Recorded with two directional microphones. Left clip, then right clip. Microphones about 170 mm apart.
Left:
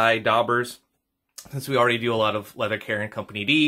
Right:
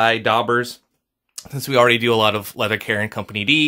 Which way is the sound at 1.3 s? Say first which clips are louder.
Right 6 dB; 85° right.